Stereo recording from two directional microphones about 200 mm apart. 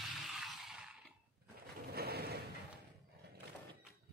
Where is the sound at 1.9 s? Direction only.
50° right (ahead or behind).